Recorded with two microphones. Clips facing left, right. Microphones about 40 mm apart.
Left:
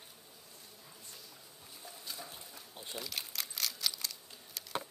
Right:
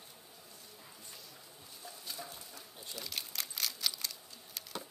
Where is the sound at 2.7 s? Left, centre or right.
Left.